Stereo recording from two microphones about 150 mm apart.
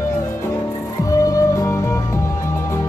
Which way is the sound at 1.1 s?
20° left (ahead or behind).